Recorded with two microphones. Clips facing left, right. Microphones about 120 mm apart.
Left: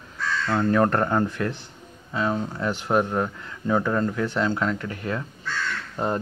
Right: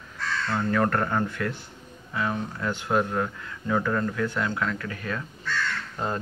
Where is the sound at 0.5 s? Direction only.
25° left (ahead or behind).